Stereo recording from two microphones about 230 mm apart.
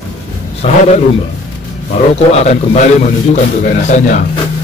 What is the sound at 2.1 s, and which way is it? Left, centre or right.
A man's voice, left.